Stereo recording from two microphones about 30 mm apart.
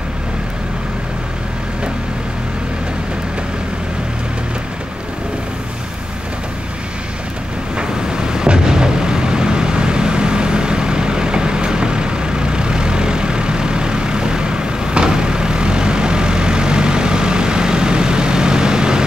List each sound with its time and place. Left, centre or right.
7.7 s vehicle: right